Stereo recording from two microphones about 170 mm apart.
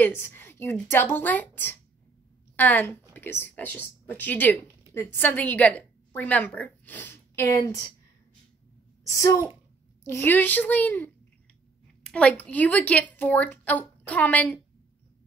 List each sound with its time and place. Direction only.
0.0 s a woman's voice: 15° left (ahead or behind)
9.1 s a woman's voice: 20° left (ahead or behind)